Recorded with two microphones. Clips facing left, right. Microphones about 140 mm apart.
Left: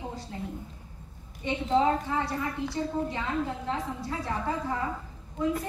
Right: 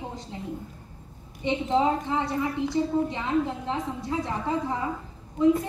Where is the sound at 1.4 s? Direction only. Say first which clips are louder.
Right 1 dB; 20° right (ahead or behind).